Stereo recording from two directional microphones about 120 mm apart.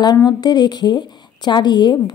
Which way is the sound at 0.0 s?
35° left (ahead or behind).